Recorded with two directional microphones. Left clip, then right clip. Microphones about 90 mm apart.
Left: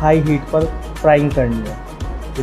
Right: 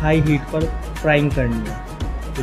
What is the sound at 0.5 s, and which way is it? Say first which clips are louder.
Speech: left 9 dB; 15° left (ahead or behind).